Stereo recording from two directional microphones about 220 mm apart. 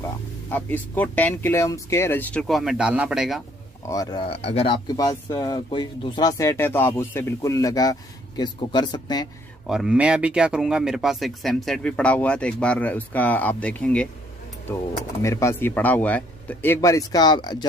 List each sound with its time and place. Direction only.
0.5 s speech: 5° left (ahead or behind)
3.8 s speech: 15° left (ahead or behind)
9.7 s speech: 5° right (ahead or behind)
15.2 s speech: 15° left (ahead or behind)